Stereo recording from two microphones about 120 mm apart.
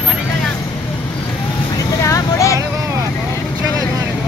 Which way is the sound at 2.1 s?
25° left (ahead or behind).